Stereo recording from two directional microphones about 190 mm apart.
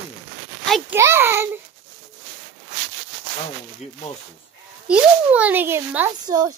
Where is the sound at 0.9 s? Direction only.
15° right (ahead or behind).